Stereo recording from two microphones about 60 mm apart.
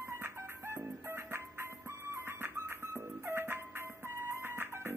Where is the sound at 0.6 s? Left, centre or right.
Right.